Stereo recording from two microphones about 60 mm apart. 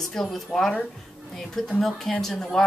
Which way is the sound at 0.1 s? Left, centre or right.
Centre.